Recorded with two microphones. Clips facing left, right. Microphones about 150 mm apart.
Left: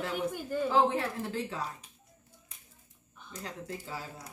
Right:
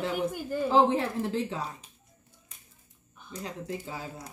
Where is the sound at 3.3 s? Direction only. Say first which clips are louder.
Right 4 dB; 20° right (ahead or behind).